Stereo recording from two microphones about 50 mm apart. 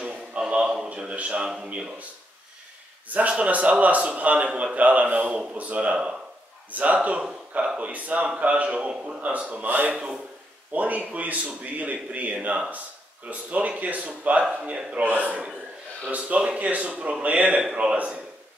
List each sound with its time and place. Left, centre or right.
0.0 s a sound: right
0.8 s a man's voice: right
3.2 s a man's voice: right
4.4 s a man's voice: centre
4.7 s a man's voice: right